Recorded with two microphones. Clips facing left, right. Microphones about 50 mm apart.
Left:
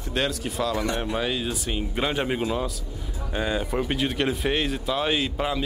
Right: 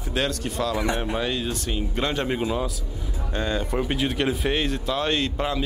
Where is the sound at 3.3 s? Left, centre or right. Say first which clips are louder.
Even; centre.